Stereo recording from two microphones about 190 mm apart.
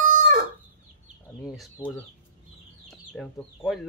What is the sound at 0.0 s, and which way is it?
Chicken, 40° right (ahead or behind).